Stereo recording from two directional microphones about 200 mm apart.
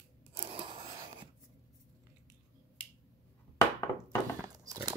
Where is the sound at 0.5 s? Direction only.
25° right (ahead or behind).